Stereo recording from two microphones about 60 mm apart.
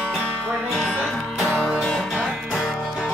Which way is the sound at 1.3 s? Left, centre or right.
Centre.